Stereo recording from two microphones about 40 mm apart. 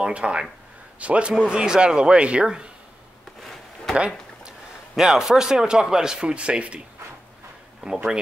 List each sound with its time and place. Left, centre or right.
0.0 s a man's voice: right
1.3 s speech: centre
3.9 s a sound: right
4.9 s speech: centre; by 6.8 s right
7.8 s speech: right